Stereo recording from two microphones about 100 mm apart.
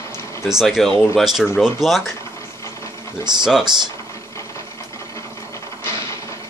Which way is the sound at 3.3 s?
45° right (ahead or behind).